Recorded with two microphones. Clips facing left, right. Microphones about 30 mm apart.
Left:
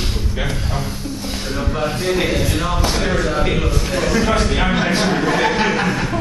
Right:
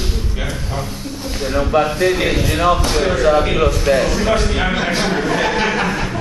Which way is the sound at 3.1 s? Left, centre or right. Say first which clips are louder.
Right 4 dB; right.